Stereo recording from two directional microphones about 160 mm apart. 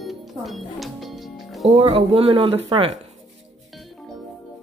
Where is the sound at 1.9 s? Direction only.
35° right (ahead or behind).